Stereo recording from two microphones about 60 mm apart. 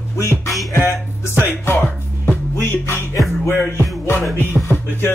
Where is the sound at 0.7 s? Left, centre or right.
Left.